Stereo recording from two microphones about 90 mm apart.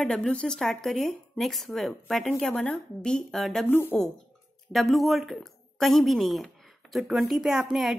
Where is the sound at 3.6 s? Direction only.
25° left (ahead or behind).